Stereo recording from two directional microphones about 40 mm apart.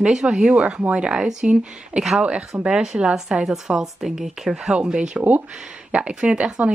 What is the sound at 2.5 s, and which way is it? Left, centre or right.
Speech, centre.